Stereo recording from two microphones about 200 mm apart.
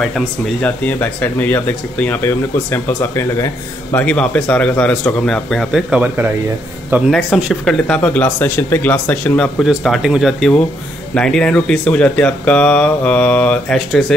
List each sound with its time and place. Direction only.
0.0 s speech: 5° left (ahead or behind)
7.1 s speech: centre (ahead or behind)